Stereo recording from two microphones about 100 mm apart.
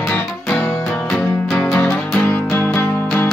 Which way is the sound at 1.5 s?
25° left (ahead or behind).